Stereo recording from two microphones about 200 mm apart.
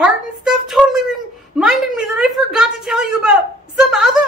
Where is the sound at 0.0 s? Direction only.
5° right (ahead or behind).